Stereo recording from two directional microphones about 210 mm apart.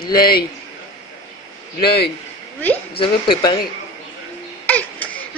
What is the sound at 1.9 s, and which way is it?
Speech, 50° left (ahead or behind).